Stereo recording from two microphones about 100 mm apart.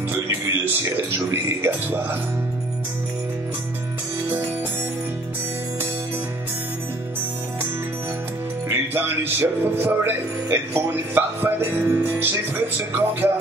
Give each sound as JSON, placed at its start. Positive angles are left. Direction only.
{"t": 0.8, "sound": "music", "side_deg": -25}
{"t": 8.6, "sound": "music", "side_deg": -25}